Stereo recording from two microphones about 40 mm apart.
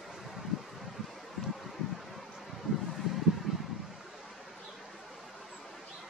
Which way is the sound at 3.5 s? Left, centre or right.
Centre.